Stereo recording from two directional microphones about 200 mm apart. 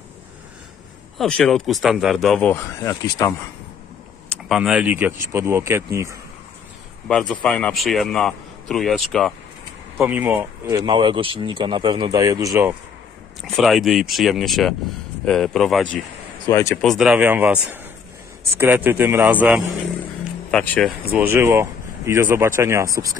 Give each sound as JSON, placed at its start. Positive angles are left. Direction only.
{"t": 1.1, "sound": "a man's voice", "side_deg": 5}
{"t": 4.5, "sound": "speech", "side_deg": -5}
{"t": 7.1, "sound": "a man's voice", "side_deg": 5}
{"t": 13.4, "sound": "a man's voice", "side_deg": 0}
{"t": 16.4, "sound": "speech", "side_deg": 15}
{"t": 16.8, "sound": "a man's voice", "side_deg": 0}
{"t": 18.6, "sound": "speech", "side_deg": -10}
{"t": 20.5, "sound": "a man's voice", "side_deg": 5}
{"t": 21.1, "sound": "speech", "side_deg": -10}